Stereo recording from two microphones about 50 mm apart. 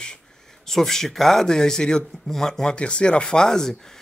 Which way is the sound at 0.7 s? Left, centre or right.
Centre.